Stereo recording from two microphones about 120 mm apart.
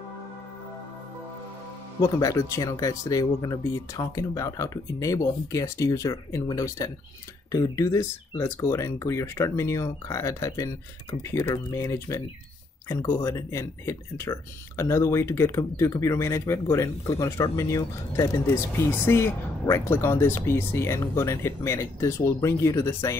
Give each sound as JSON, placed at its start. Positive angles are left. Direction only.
{"t": 2.0, "sound": "speech", "side_deg": 30}